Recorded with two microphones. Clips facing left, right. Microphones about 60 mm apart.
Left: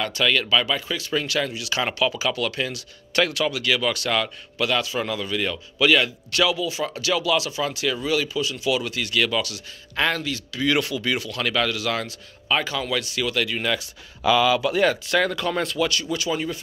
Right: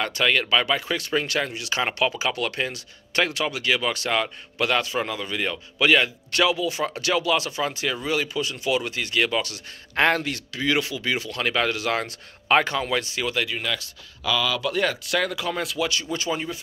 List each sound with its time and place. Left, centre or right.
0.0 s a man's voice: right
0.7 s speech: right
1.1 s speech: right
4.6 s a man's voice: right
9.9 s speech: right
10.6 s speech: centre
12.1 s a man's voice: right; by 13.6 s centre
13.6 s speech: centre
14.2 s speech: left
14.6 s speech: centre
15.9 s speech: right